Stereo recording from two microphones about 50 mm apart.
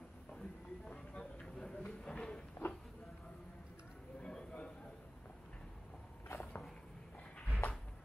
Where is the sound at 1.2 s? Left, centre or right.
Centre.